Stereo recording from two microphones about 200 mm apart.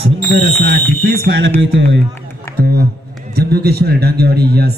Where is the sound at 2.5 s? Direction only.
50° right (ahead or behind).